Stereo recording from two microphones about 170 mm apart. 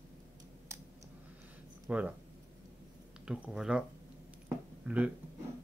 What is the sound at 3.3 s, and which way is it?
Speech, 5° right (ahead or behind).